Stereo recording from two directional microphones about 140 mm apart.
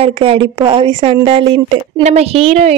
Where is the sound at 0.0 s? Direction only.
40° right (ahead or behind).